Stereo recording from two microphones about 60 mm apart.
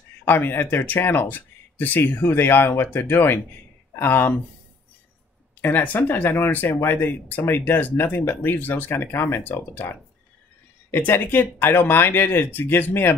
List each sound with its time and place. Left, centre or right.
0.2 s speech: left
5.6 s speech: left